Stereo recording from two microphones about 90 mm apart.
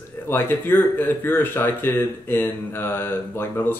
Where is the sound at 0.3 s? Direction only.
25° left (ahead or behind).